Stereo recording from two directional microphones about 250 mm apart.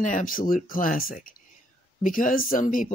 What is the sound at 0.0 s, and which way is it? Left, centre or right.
Speech, left.